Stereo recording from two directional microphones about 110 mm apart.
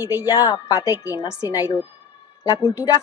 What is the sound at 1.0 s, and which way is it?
Speech, 30° left (ahead or behind).